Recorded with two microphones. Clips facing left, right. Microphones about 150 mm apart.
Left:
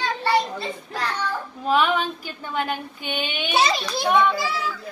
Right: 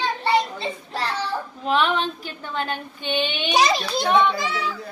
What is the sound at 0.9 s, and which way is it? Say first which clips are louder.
Child singing: right 1 dB; 30° right (ahead or behind).